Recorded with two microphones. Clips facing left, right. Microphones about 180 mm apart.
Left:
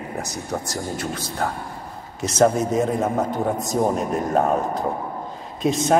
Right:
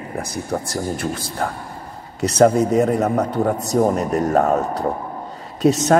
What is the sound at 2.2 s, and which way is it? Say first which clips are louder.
A man's voice: right 4 dB; 60° right (ahead or behind).